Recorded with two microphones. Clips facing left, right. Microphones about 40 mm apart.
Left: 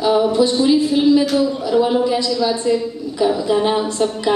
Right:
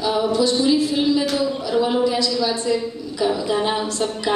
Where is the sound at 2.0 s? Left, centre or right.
Left.